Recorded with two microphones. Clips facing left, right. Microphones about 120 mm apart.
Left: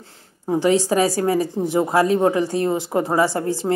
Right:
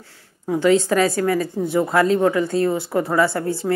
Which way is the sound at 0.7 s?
15° left (ahead or behind).